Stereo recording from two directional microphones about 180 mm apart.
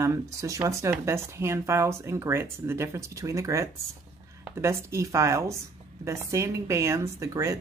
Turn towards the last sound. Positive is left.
turn(degrees=-20)  # may be behind; listen again after turning